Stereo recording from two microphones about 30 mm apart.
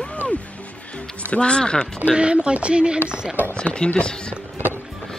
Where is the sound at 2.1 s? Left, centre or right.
Right.